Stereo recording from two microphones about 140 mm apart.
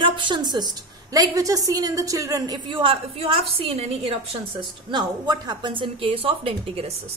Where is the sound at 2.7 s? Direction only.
35° right (ahead or behind).